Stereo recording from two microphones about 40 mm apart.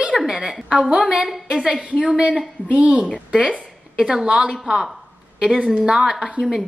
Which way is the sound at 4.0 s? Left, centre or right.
Centre.